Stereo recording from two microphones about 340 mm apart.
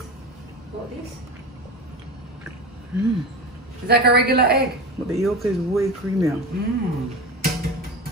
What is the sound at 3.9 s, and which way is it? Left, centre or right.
Speech, right.